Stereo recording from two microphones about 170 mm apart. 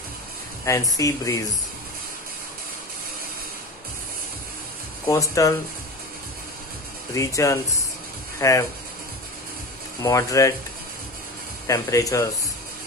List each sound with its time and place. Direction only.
0.7 s speech: 20° left (ahead or behind)
5.0 s speech: 20° left (ahead or behind)
7.2 s speech: 20° left (ahead or behind)
10.0 s speech: 20° left (ahead or behind)
11.6 s speech: 20° left (ahead or behind)